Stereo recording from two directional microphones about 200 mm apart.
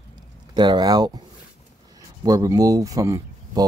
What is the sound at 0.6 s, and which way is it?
Speech, 20° right (ahead or behind).